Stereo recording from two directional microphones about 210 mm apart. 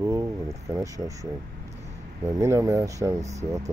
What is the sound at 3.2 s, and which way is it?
Speech, 35° right (ahead or behind).